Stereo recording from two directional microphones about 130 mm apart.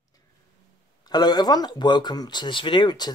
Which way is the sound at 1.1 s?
30° left (ahead or behind).